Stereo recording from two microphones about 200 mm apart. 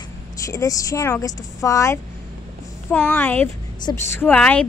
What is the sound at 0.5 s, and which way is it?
A woman's voice, 15° left (ahead or behind).